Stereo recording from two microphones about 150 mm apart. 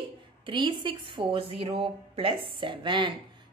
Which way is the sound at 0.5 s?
30° right (ahead or behind).